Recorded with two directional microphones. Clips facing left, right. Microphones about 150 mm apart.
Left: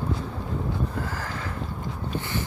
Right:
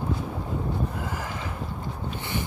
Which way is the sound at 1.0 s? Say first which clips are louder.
Left 1 dB; 15° right (ahead or behind).